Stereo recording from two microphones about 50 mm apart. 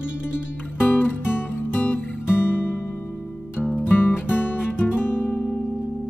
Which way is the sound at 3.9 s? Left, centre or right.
Left.